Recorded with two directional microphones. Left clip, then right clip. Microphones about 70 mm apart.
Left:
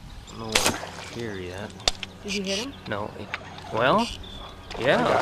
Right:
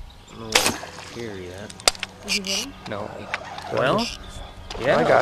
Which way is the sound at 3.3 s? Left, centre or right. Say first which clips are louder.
Right 5 dB; right.